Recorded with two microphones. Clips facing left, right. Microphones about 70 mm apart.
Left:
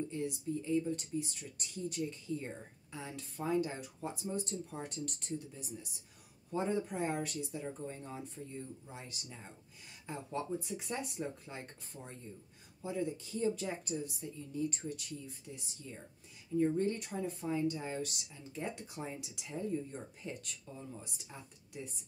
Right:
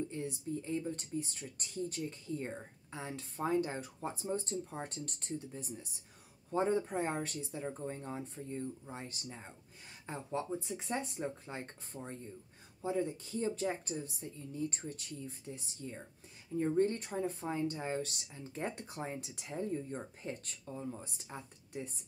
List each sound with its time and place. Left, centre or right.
0.1 s speech: right
20.7 s speech: right